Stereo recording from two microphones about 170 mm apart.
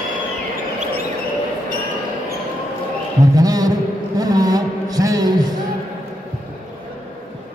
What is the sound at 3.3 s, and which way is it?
Music, 20° right (ahead or behind).